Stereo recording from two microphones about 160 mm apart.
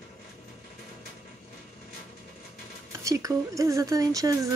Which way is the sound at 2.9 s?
20° right (ahead or behind).